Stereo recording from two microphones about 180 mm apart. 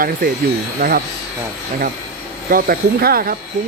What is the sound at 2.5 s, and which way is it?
Speech, 55° right (ahead or behind).